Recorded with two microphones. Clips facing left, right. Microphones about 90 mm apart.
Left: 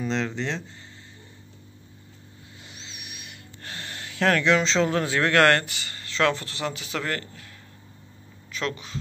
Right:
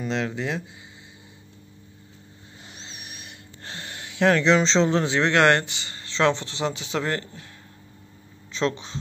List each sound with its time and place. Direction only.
0.0 s speech: 5° right (ahead or behind)
2.7 s speech: 35° right (ahead or behind)
8.5 s speech: 30° right (ahead or behind)